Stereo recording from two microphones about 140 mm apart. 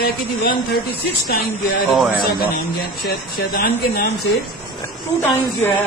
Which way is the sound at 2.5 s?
90° left.